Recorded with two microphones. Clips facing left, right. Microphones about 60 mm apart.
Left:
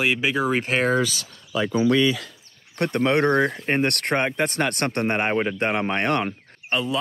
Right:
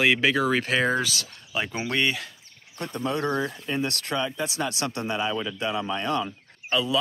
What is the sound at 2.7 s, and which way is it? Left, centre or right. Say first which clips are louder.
Speech: left 8 dB; left.